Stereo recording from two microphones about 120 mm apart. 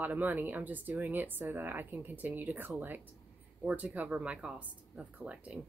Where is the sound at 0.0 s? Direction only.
15° right (ahead or behind).